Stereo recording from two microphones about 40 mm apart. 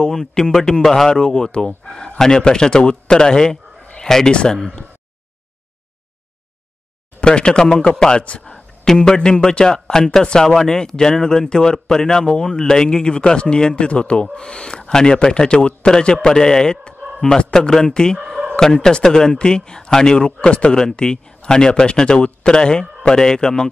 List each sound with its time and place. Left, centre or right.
0.0 s a man's voice: centre
7.2 s speech: left
8.5 s a man's voice: centre
10.5 s speech: centre